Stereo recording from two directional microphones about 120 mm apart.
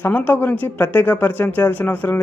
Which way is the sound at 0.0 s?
15° left (ahead or behind).